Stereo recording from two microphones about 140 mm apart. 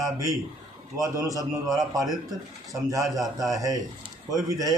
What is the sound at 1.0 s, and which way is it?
Speech, 25° right (ahead or behind).